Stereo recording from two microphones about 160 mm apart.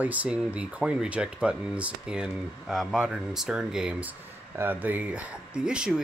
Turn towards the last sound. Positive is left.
turn(degrees=-5)  # may be behind; listen again after turning